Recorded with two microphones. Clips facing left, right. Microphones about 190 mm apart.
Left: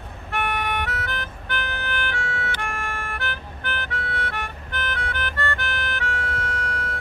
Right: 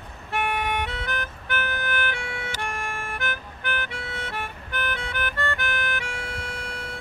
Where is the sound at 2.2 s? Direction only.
15° right (ahead or behind).